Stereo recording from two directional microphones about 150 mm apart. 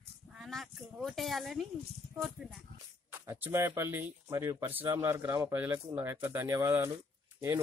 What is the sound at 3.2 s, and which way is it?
Speech, 15° right (ahead or behind).